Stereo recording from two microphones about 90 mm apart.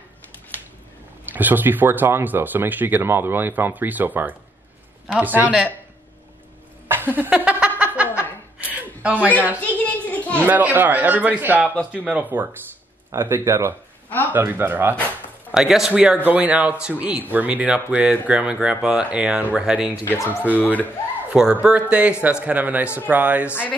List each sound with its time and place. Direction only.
1.2 s speech: 20° right (ahead or behind)
6.9 s a sound: 20° right (ahead or behind)
7.8 s snicker: 15° right (ahead or behind)
8.5 s a sound: 20° right (ahead or behind)
9.6 s a sound: 15° left (ahead or behind)
10.4 s speech: 20° right (ahead or behind)
11.6 s speech: 15° left (ahead or behind)
11.9 s speech: 10° right (ahead or behind)
13.1 s speech: 30° right (ahead or behind)
14.0 s speech: 20° left (ahead or behind)
14.3 s speech: 25° right (ahead or behind)
15.5 s speech: 5° right (ahead or behind)
20.5 s speech: 20° left (ahead or behind)
21.3 s speech: 10° right (ahead or behind)